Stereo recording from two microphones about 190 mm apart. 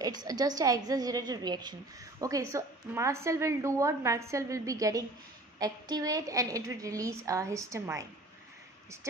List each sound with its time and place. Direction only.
0.0 s a woman's voice: 20° right (ahead or behind)